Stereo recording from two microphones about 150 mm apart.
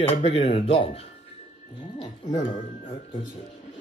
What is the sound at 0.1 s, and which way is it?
Speech, 40° left (ahead or behind).